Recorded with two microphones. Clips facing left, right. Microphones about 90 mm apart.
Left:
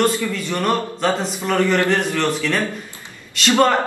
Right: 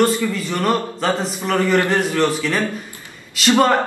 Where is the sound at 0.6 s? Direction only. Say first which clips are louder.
Even; 5° right (ahead or behind).